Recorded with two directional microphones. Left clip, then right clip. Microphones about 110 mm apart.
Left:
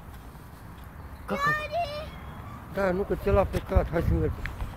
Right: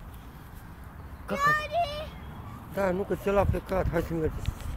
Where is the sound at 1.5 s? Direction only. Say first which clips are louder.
Right 2 dB; 85° right.